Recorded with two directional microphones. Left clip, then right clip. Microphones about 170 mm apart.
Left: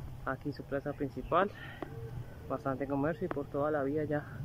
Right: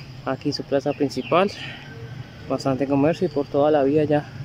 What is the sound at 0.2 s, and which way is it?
Speech, 20° right (ahead or behind).